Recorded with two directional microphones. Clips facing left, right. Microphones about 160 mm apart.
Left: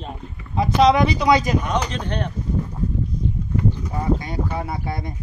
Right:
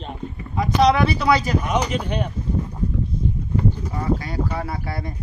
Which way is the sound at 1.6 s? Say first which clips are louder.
Right 2 dB; 10° right (ahead or behind).